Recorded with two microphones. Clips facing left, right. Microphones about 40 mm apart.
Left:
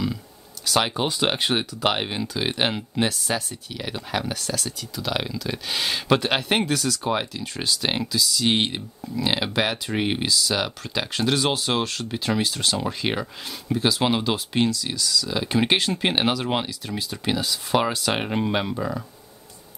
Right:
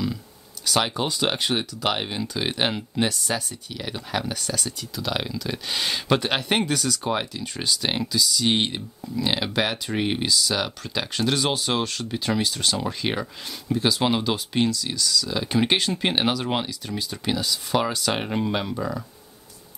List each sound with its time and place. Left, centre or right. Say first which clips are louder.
0.7 s speech: left 1 dB; centre
2.2 s speech: even; centre